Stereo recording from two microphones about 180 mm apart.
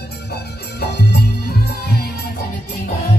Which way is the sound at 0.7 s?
65° left (ahead or behind).